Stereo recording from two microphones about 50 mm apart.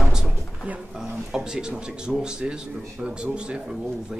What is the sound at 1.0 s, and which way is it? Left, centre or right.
A man's voice, centre.